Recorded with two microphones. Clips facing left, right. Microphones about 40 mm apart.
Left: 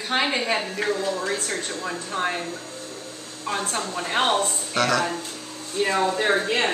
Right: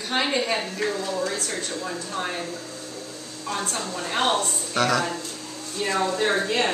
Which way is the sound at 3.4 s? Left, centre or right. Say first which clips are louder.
Left 2 dB; left.